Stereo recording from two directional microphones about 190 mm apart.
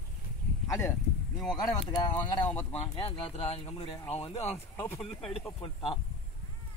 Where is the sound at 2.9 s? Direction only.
35° left (ahead or behind).